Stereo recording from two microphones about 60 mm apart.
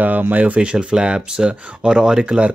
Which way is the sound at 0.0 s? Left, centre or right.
Right.